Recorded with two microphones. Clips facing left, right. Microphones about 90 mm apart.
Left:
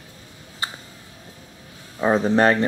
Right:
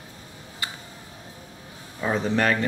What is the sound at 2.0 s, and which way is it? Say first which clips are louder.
Speech: left 6 dB; 35° left (ahead or behind).